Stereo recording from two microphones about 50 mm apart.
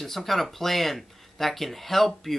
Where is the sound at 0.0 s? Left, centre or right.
Centre.